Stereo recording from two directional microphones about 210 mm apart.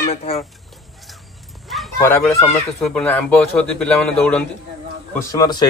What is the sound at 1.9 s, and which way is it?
Speech, 10° left (ahead or behind).